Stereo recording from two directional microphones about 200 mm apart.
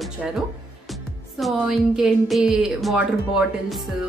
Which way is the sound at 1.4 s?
Centre (ahead or behind).